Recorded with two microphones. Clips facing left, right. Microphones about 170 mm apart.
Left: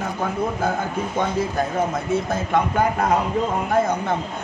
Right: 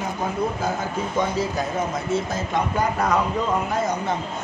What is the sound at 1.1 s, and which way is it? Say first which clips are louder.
Speech: left 1 dB; 55° left (ahead or behind).